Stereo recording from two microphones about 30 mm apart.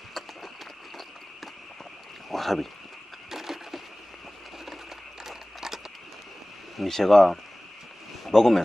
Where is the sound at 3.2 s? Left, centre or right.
Centre.